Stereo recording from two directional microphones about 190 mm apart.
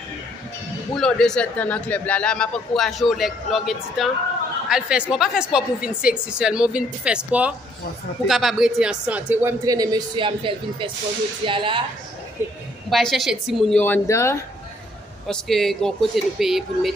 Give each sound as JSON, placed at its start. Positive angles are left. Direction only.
{"t": 0.9, "sound": "speech", "side_deg": 5}
{"t": 12.9, "sound": "speech", "side_deg": 0}
{"t": 15.2, "sound": "speech", "side_deg": 0}